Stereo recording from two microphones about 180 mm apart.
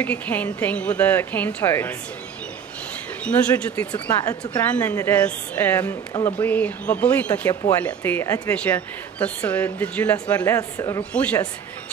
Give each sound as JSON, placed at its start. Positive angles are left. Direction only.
{"t": 0.0, "sound": "a woman's voice", "side_deg": 10}
{"t": 3.3, "sound": "a woman's voice", "side_deg": 5}
{"t": 3.9, "sound": "speech", "side_deg": 20}
{"t": 4.6, "sound": "a woman's voice", "side_deg": 10}